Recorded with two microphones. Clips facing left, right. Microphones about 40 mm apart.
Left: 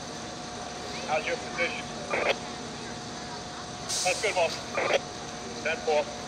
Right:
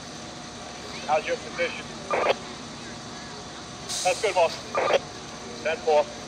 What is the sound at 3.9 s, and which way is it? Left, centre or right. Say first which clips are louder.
Speech: right 4 dB; right.